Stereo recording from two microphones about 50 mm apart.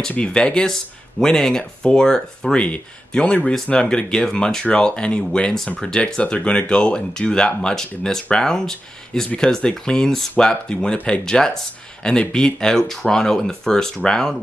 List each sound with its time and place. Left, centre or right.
0.1 s speech: left